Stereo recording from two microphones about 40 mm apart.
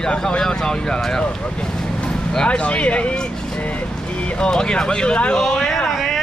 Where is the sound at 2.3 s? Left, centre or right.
Left.